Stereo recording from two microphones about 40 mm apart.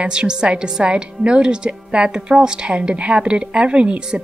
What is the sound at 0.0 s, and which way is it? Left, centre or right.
A woman's voice, right.